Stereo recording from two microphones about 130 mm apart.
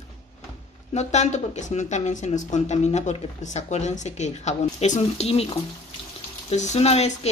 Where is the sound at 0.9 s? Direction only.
60° left (ahead or behind).